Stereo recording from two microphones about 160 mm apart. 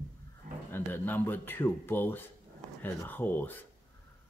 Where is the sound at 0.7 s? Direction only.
15° left (ahead or behind).